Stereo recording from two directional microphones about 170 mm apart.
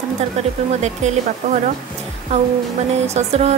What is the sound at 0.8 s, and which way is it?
Speech, 45° right (ahead or behind).